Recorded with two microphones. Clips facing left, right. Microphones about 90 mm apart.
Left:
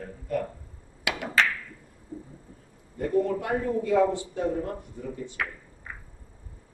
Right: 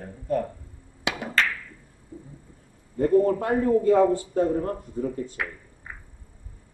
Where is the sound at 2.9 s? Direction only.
40° right (ahead or behind).